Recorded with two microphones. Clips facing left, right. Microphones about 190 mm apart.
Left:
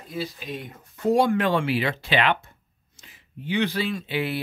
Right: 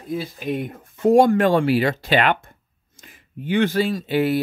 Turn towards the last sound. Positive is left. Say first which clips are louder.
# right 8 dB
turn(degrees=-45)  # may be behind; listen again after turning